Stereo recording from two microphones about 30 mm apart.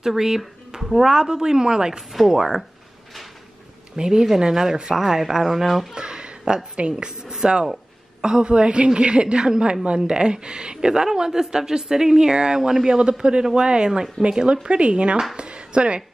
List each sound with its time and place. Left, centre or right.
0.0 s speech: centre
1.1 s speech: centre
2.1 s speech: centre
3.9 s speech: right; by 5.9 s centre
5.9 s a sound: right
6.8 s a woman's voice: right
14.2 s speech: left
14.5 s a woman's voice: right